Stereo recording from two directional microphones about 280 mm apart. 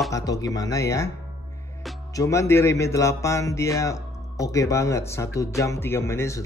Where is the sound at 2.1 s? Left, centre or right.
Centre.